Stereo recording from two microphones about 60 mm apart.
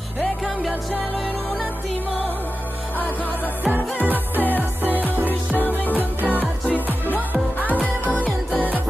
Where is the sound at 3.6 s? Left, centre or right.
Right.